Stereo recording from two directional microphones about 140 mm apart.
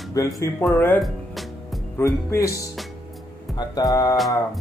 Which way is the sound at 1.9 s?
20° left (ahead or behind).